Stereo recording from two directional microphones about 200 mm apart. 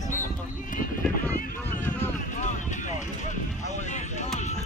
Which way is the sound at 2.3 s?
35° left (ahead or behind).